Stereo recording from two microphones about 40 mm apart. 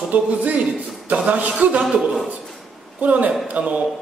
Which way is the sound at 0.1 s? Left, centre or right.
Right.